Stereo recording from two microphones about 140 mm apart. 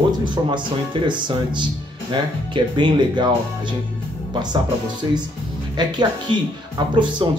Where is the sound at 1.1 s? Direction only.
35° right (ahead or behind).